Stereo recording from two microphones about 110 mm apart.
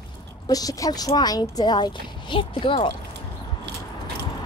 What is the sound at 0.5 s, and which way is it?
Speech, 35° left (ahead or behind).